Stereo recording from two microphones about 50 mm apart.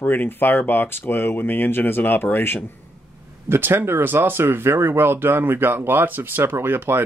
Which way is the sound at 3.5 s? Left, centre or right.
Right.